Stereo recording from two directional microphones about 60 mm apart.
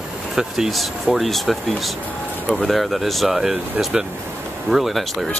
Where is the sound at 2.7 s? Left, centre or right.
Centre.